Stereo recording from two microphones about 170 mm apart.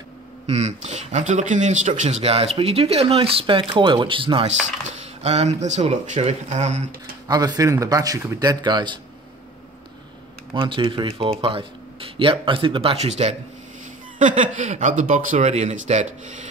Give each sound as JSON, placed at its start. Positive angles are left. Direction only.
{"t": 0.5, "sound": "speech", "side_deg": -40}
{"t": 7.2, "sound": "speech", "side_deg": -25}
{"t": 10.5, "sound": "speech", "side_deg": -30}
{"t": 14.1, "sound": "speech", "side_deg": -50}